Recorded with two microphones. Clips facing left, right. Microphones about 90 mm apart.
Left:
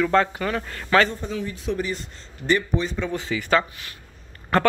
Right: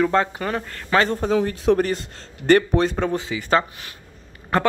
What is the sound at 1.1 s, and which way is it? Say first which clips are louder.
A man's voice: right 9 dB; 70° right (ahead or behind).